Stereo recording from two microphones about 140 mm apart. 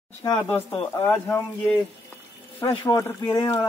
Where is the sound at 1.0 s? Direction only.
15° left (ahead or behind).